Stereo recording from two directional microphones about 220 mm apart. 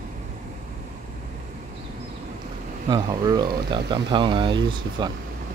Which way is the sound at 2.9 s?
20° right (ahead or behind).